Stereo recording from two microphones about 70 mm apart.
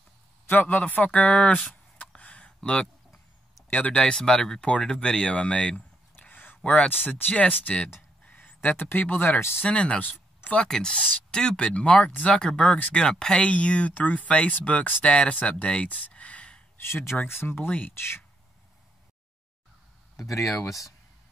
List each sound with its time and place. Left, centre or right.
0.5 s speech: left
2.0 s a sound: centre
3.7 s speech: centre
6.1 s a sound: left
6.6 s speech: centre
8.3 s a sound: left
8.6 s speech: left
16.7 s speech: left
20.2 s speech: left